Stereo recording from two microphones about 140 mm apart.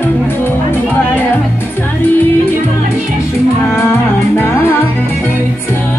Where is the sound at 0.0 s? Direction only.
15° left (ahead or behind).